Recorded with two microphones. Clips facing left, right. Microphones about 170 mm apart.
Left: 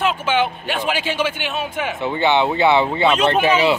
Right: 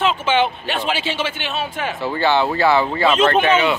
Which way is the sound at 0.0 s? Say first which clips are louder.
Right 1 dB; 10° left (ahead or behind).